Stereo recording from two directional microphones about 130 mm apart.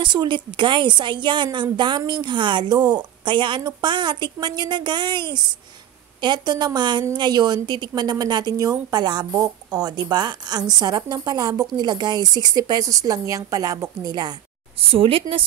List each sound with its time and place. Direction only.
0.0 s a woman's voice: 35° right (ahead or behind)
14.9 s a woman's voice: 45° right (ahead or behind)